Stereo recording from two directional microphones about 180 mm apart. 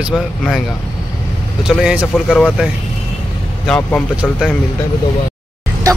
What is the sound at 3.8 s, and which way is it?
Speech, 10° left (ahead or behind).